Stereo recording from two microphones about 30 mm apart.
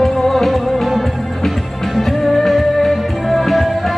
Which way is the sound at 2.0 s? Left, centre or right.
Centre.